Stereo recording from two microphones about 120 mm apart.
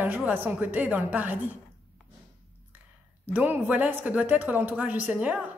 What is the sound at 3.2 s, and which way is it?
A woman's voice, 15° right (ahead or behind).